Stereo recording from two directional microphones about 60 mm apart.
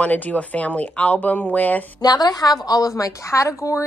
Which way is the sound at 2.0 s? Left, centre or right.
Left.